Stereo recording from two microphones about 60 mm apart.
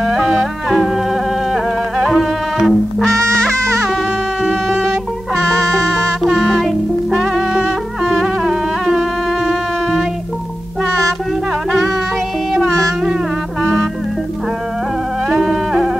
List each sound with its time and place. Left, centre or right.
0.0 s music: centre
3.2 s music: right
4.4 s music: centre
15.2 s music: centre